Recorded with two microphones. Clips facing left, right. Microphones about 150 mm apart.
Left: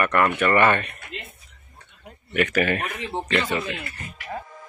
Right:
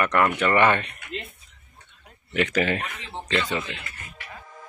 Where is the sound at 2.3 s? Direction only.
20° right (ahead or behind).